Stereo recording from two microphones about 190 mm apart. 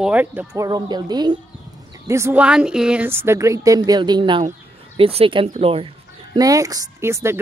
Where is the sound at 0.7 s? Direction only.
20° right (ahead or behind).